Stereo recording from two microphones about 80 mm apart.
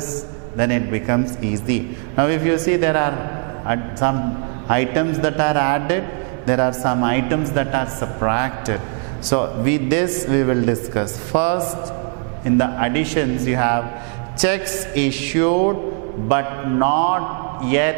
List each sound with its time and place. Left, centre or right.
0.6 s a man's voice: centre